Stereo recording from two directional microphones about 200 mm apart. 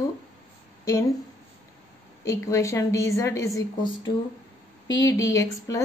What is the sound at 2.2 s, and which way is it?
A woman's voice, 15° left (ahead or behind).